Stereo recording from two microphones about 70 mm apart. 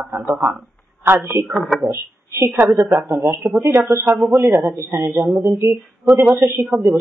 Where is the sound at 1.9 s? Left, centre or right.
Right.